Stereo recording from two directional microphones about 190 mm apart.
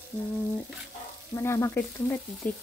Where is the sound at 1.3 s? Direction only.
15° left (ahead or behind).